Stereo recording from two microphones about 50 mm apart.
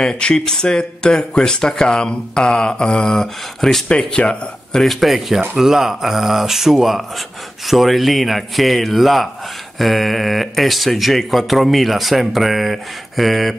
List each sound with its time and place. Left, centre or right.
0.0 s speech: centre